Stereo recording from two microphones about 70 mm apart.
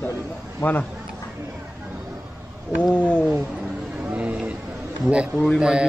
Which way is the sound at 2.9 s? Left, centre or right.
Centre.